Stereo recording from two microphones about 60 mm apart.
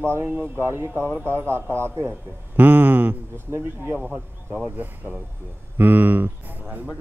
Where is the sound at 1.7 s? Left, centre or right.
Right.